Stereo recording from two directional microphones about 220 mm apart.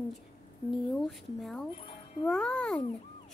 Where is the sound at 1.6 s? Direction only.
20° left (ahead or behind).